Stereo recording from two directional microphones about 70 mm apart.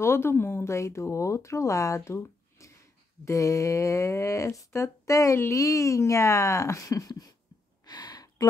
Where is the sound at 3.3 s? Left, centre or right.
Left.